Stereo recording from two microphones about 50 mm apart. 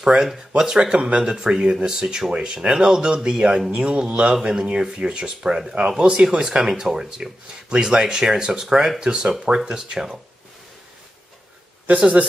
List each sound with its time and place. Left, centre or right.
0.0 s speech: centre